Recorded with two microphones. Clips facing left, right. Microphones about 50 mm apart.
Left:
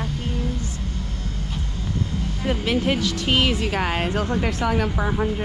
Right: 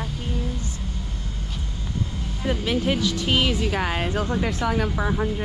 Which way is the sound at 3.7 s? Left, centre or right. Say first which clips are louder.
Left 1 dB; left.